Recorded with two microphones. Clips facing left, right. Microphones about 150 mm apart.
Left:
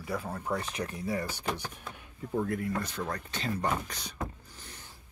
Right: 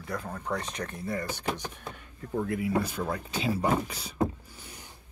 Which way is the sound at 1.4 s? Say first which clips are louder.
Right 2 dB; 15° right (ahead or behind).